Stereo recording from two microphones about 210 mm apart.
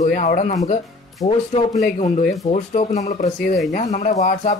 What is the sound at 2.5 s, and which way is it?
Speech, 35° left (ahead or behind).